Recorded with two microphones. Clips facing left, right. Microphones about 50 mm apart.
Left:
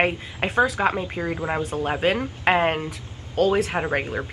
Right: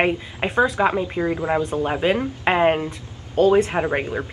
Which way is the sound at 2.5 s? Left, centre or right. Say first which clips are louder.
Right 2 dB; centre.